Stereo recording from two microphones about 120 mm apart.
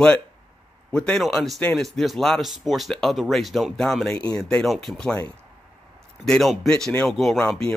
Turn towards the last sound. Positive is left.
turn(degrees=5)  # may be behind; listen again after turning